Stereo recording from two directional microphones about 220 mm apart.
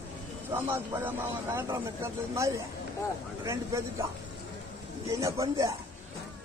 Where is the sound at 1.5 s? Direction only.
10° right (ahead or behind).